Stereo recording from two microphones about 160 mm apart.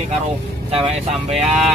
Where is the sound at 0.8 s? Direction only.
40° right (ahead or behind).